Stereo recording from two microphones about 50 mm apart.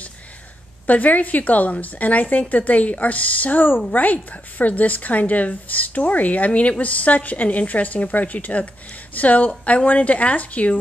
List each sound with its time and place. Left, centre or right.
0.8 s a woman's voice: left